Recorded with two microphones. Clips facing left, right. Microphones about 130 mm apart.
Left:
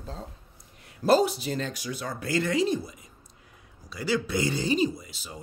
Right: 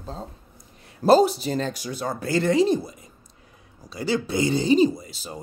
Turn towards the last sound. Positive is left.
turn(degrees=-35)  # may be behind; listen again after turning